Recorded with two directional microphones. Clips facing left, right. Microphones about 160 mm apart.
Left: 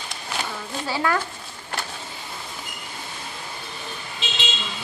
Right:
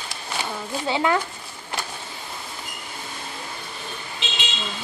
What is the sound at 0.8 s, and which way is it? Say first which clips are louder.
Speech: right 2 dB; 20° right (ahead or behind).